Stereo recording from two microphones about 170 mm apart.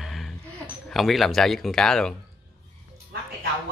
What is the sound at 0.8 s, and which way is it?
Speech, centre (ahead or behind).